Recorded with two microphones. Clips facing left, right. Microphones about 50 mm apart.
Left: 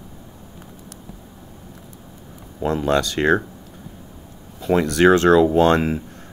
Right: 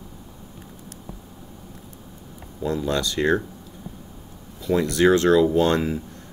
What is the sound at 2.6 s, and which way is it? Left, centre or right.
Speech, left.